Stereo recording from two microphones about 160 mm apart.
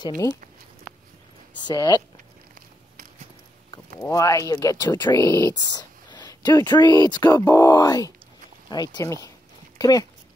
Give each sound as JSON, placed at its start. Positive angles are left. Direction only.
{"t": 0.0, "sound": "speech", "side_deg": 20}
{"t": 1.6, "sound": "speech", "side_deg": 25}
{"t": 4.0, "sound": "speech", "side_deg": 20}